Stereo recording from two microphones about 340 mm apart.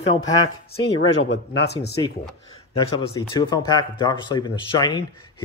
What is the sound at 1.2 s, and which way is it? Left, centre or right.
Speech, left.